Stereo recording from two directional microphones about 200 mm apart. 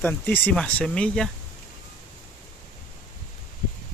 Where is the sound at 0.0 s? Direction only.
10° left (ahead or behind).